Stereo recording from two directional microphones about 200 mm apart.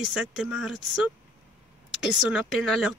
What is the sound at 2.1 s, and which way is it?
Speech, 5° right (ahead or behind).